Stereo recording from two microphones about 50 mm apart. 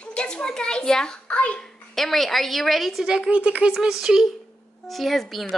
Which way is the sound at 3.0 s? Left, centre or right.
Centre.